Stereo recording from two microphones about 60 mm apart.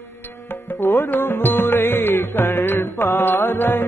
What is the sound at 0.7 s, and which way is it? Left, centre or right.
Music, left.